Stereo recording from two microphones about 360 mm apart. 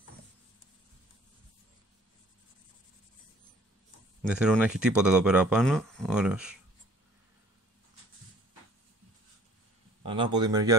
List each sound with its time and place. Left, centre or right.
4.3 s speech: centre
10.0 s speech: centre